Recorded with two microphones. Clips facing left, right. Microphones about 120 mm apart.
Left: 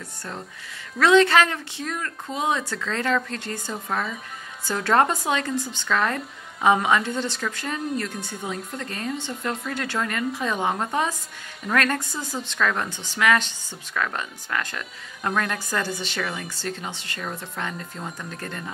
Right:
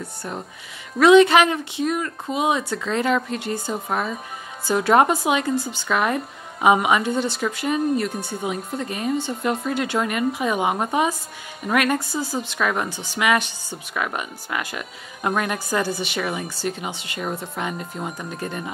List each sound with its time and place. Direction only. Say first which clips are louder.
0.0 s speech: right 4 dB; 15° right (ahead or behind)